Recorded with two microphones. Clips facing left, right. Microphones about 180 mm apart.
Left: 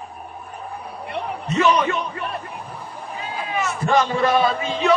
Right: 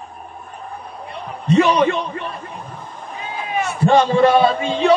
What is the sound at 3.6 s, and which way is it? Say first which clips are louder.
A man's voice: right 5 dB; 30° right (ahead or behind).